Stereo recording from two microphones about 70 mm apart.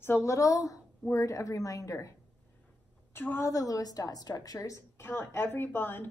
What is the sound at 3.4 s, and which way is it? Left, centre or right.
A woman's voice, left.